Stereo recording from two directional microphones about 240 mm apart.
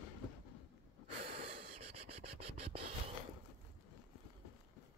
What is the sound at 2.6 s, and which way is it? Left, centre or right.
Music, right.